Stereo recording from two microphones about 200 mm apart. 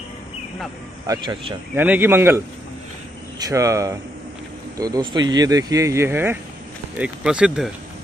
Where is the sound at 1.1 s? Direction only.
20° right (ahead or behind).